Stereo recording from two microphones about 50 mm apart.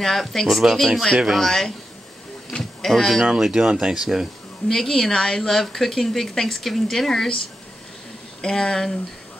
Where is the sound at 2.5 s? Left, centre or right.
Left.